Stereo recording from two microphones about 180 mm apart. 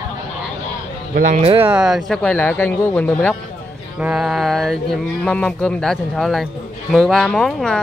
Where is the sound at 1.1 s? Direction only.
45° right (ahead or behind).